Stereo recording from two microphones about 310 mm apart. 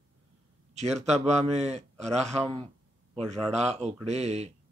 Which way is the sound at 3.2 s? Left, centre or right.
Centre.